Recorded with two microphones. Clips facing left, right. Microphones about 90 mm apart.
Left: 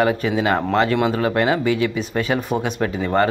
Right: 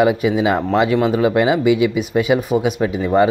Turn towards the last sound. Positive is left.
turn(degrees=-10)  # may be behind; listen again after turning